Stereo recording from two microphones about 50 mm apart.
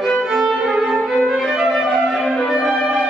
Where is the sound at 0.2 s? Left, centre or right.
Centre.